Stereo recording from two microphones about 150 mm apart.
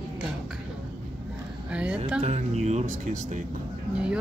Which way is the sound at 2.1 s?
45° right (ahead or behind).